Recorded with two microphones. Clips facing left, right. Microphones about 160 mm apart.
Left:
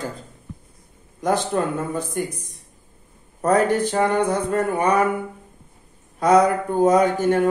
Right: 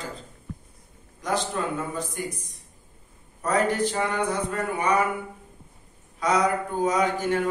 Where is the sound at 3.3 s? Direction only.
50° left (ahead or behind).